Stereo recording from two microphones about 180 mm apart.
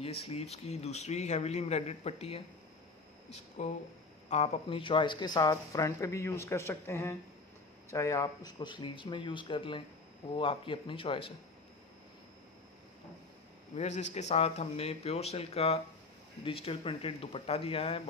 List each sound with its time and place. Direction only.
0.0 s speech: 35° left (ahead or behind)
3.6 s speech: 40° left (ahead or behind)
13.7 s speech: 40° left (ahead or behind)